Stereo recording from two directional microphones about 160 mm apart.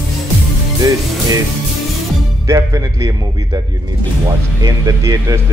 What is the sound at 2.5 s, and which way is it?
A man's voice, 20° right (ahead or behind).